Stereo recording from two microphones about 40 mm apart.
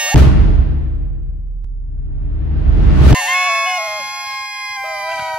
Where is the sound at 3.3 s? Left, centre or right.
Right.